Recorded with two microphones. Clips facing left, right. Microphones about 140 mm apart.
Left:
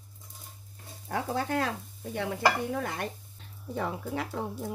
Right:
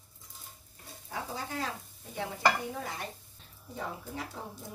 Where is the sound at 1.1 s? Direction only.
65° left (ahead or behind).